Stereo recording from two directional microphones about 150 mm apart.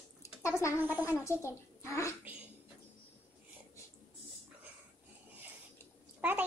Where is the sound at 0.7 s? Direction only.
15° right (ahead or behind).